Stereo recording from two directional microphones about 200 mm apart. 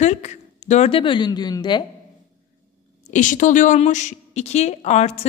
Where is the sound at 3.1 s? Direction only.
40° left (ahead or behind).